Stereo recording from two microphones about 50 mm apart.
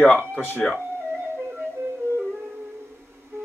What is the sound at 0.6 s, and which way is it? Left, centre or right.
Speech, centre.